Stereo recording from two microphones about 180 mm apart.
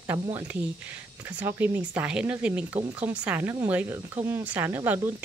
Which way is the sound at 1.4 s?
10° right (ahead or behind).